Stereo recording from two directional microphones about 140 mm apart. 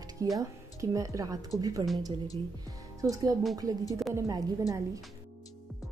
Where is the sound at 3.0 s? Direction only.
25° right (ahead or behind).